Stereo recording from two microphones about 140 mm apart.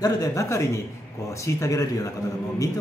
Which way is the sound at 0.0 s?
25° left (ahead or behind).